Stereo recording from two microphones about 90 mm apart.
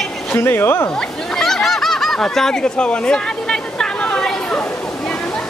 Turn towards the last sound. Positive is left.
turn(degrees=10)  # may be behind; listen again after turning